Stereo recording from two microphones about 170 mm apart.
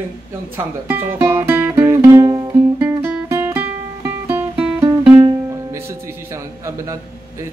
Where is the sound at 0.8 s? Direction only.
10° right (ahead or behind).